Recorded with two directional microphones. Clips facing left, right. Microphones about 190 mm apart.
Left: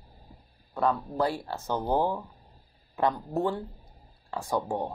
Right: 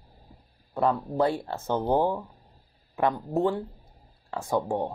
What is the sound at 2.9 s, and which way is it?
Speech, 20° right (ahead or behind).